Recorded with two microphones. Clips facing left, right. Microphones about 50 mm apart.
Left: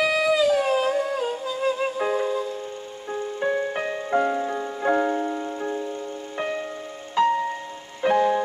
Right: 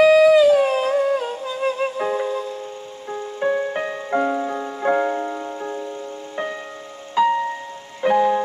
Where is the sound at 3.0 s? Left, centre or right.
Centre.